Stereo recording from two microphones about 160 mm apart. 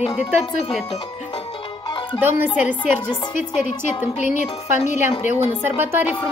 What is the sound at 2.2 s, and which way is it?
Speech, 15° right (ahead or behind).